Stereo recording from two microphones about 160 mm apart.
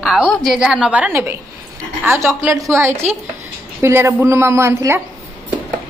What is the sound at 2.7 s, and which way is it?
Speech, 15° right (ahead or behind).